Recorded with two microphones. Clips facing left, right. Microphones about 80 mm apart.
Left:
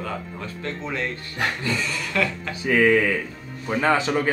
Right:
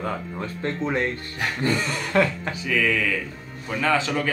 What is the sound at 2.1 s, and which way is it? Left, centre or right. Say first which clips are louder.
Speech: right 4 dB; right.